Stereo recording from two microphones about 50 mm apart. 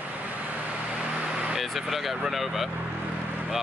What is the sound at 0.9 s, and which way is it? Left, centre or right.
Vehicle, centre.